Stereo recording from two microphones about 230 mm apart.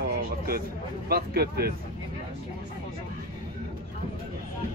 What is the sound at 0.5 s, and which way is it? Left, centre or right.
Speech, right.